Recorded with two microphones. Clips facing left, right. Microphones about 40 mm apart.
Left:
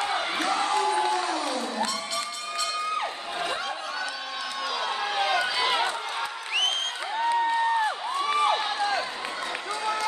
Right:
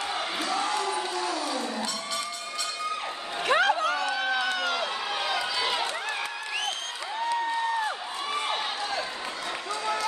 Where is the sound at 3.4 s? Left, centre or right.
Right.